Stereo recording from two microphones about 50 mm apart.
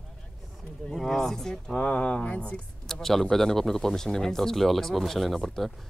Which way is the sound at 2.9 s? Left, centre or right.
Centre.